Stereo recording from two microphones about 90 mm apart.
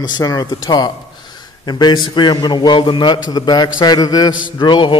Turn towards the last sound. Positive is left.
turn(degrees=60)  # may be behind; listen again after turning